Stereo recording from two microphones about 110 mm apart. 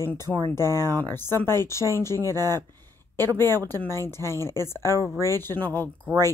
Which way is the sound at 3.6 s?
20° left (ahead or behind).